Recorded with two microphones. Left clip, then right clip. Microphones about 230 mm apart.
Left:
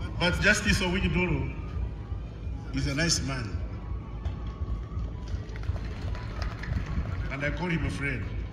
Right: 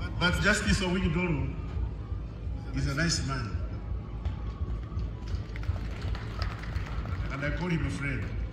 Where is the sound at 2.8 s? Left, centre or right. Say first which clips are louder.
Left 3 dB; left.